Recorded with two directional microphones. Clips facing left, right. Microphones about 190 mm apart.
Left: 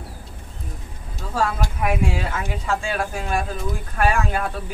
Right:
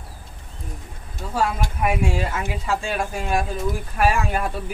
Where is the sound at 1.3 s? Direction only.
5° right (ahead or behind).